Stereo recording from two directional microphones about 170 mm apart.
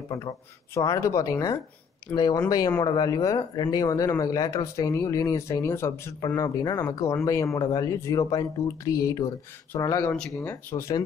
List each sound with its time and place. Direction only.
0.1 s speech: 20° left (ahead or behind)